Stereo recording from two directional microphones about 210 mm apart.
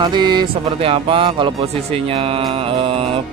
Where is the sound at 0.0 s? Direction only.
20° right (ahead or behind).